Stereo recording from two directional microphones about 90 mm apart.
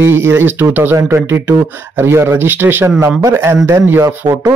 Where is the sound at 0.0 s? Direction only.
30° right (ahead or behind).